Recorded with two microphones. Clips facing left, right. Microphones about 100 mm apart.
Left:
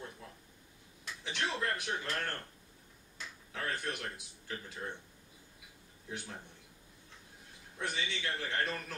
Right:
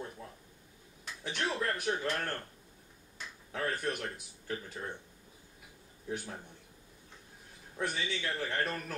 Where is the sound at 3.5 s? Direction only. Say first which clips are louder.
Right 4 dB; 45° right (ahead or behind).